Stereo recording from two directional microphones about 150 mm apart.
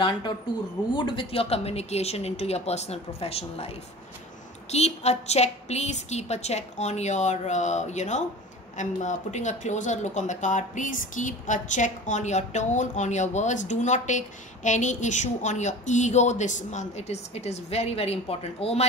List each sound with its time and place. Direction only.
0.9 s speech: 35° left (ahead or behind)